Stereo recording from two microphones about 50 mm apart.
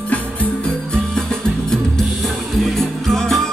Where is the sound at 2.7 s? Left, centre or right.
Centre.